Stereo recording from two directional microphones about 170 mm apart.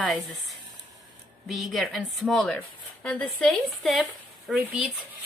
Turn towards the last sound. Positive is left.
turn(degrees=-5)  # may be behind; listen again after turning